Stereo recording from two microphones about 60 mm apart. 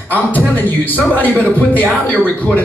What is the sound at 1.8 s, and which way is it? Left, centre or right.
Speech, right.